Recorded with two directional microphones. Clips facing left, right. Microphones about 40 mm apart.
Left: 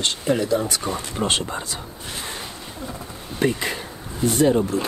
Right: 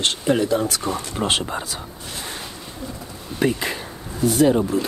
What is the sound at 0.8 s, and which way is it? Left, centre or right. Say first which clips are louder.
Speech: right 1 dB; centre.